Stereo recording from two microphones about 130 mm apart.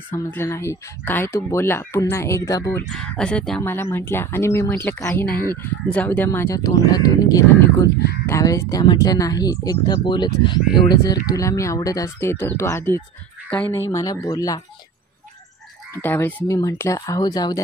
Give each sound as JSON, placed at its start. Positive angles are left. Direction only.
{"t": 0.1, "sound": "speech", "side_deg": 15}
{"t": 2.9, "sound": "speech", "side_deg": 5}
{"t": 3.6, "sound": "speech", "side_deg": 20}
{"t": 15.9, "sound": "speech", "side_deg": 15}
{"t": 16.4, "sound": "speech", "side_deg": 25}